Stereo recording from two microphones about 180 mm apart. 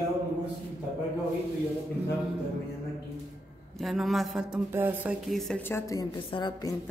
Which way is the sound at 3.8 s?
Centre (ahead or behind).